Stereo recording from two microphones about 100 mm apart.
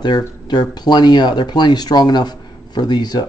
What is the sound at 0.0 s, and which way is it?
Speech, 45° left (ahead or behind).